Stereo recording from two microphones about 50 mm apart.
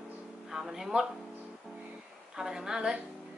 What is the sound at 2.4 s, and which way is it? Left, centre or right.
Speech, centre.